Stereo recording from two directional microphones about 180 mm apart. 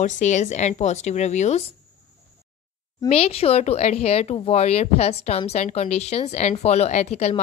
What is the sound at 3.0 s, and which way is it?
A woman's voice, 35° left (ahead or behind).